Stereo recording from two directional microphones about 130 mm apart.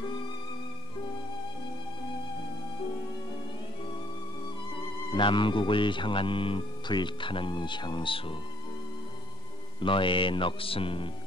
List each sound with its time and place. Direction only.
5.1 s speech: 40° left (ahead or behind)
9.8 s speech: 40° left (ahead or behind)